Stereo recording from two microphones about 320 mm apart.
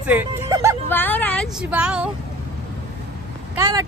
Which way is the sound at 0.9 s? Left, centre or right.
Centre.